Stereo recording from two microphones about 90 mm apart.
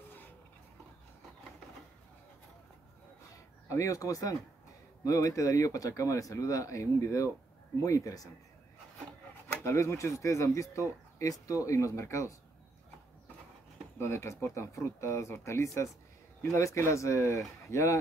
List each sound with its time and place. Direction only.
3.6 s speech: 35° left (ahead or behind)
9.5 s speech: 30° left (ahead or behind)
13.9 s speech: 30° left (ahead or behind)